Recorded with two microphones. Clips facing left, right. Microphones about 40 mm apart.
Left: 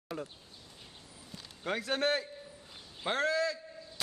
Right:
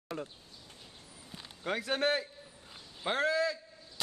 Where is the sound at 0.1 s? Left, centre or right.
Centre.